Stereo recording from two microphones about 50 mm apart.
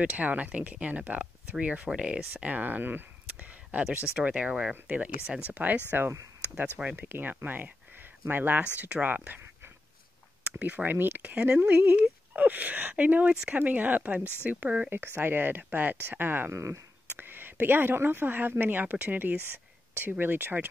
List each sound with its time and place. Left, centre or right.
0.0 s speech: right
5.9 s speech: right
8.8 s speech: right
10.4 s speech: right
11.3 s speech: right
11.8 s speech: right
14.9 s speech: right
16.5 s speech: right
17.2 s speech: right